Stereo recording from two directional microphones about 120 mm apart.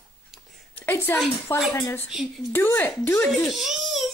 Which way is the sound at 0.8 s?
20° left (ahead or behind).